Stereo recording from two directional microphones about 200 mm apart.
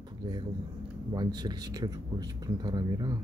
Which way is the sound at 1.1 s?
20° right (ahead or behind).